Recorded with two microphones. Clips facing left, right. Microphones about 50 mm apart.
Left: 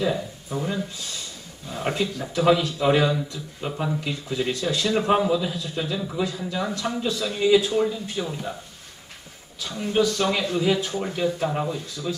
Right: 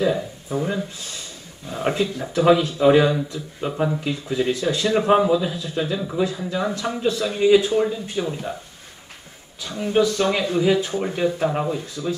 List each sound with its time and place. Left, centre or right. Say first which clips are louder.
0.0 s speech: right 4 dB; centre
4.5 s a man's voice: right 2 dB; right
7.8 s speech: right 2 dB; centre
9.7 s a man's voice: right 3 dB; right
11.4 s speech: right 3 dB; centre
11.7 s a man's voice: right 4 dB; right